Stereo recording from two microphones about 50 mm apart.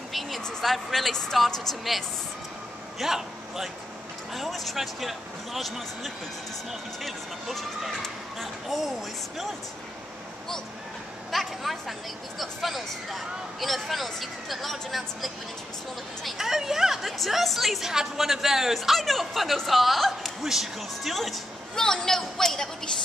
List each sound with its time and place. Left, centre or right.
0.4 s a woman's voice: centre
3.0 s a man's voice: centre
11.3 s a woman's voice: centre
21.7 s a woman's voice: centre